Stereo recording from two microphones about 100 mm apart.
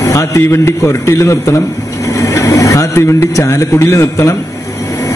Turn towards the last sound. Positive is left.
turn(degrees=30)  # may be behind; listen again after turning